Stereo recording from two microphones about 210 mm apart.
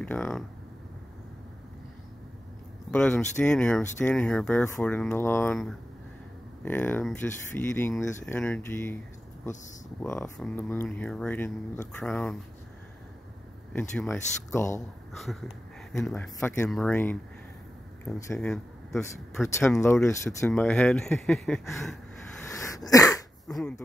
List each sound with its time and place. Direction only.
0.0 s speech: 5° left (ahead or behind)
2.9 s speech: 5° left (ahead or behind)
10.0 s speech: 15° left (ahead or behind)
13.7 s speech: 5° left (ahead or behind)
15.1 s speech: centre (ahead or behind)
18.4 s a sound: centre (ahead or behind)
19.8 s speech: 15° left (ahead or behind)
22.5 s sneeze: 15° left (ahead or behind)